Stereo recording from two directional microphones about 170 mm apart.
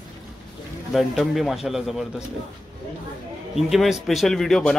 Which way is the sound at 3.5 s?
Centre (ahead or behind).